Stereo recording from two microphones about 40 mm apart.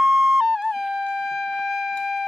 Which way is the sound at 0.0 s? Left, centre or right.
Centre.